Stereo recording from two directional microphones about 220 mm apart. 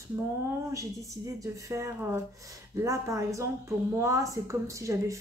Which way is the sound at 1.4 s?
15° right (ahead or behind).